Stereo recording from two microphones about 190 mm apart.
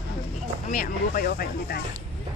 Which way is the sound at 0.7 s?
45° left (ahead or behind).